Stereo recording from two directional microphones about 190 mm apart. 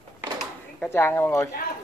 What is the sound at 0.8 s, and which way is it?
Speech, 10° left (ahead or behind).